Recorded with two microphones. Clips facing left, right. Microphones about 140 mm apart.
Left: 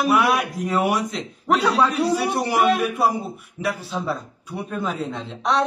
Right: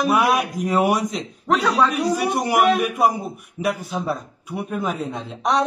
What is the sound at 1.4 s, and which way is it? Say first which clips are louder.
Speech: even; 15° left (ahead or behind).